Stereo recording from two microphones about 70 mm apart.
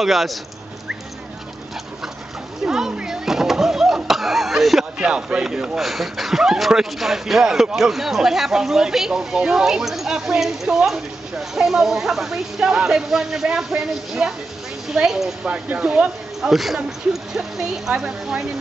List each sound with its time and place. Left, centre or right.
0.0 s speech: centre
2.6 s a sound: centre
4.9 s speech: centre
15.4 s speech: centre
16.3 s speech: centre